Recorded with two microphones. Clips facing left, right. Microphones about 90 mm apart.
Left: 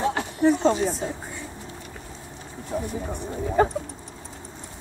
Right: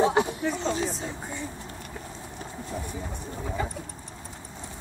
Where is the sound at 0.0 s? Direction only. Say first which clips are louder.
Right 3 dB; 20° right (ahead or behind).